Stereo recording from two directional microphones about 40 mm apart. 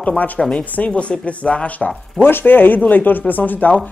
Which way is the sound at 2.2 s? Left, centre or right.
Left.